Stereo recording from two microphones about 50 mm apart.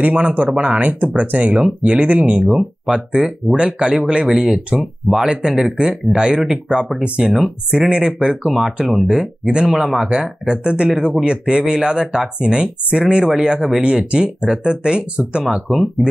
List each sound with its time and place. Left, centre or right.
0.0 s speech: right
15.4 s speech: centre